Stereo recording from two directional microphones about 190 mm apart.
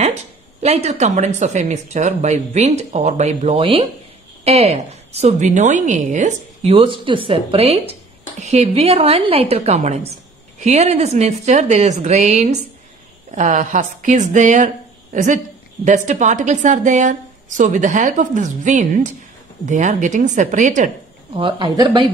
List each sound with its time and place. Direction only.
0.6 s a woman's voice: 35° right (ahead or behind)
21.3 s speech: 25° right (ahead or behind)